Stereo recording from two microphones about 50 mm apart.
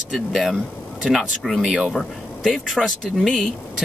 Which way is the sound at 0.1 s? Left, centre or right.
Centre.